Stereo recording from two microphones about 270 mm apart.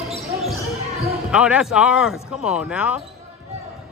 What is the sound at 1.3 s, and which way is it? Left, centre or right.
Speech, centre.